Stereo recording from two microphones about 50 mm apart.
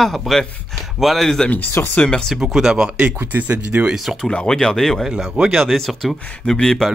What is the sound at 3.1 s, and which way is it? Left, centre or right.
Speech, right.